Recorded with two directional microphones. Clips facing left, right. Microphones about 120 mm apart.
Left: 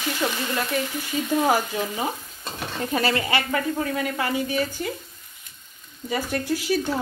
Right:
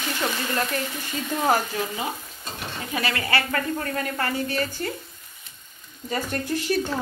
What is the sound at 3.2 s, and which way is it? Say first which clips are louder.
A woman's voice: left 1 dB; 15° left (ahead or behind).